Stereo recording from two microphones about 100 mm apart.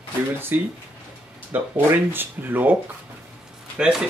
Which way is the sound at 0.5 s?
20° right (ahead or behind).